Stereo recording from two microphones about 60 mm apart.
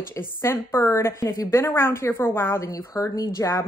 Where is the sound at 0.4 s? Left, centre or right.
Left.